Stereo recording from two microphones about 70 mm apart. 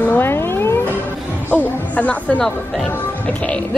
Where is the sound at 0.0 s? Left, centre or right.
Left.